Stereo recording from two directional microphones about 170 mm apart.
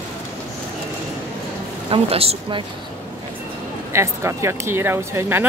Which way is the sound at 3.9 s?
15° right (ahead or behind).